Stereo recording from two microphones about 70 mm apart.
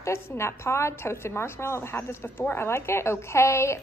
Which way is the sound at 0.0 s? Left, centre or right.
Left.